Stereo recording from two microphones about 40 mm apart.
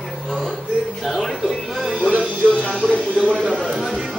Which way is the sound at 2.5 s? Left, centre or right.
Left.